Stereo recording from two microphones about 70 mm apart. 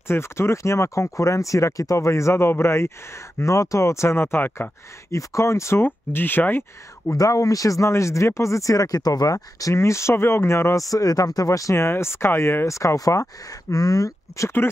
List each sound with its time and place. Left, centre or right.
0.1 s speech: left
5.1 s speech: left
5.9 s speech: left
7.1 s speech: left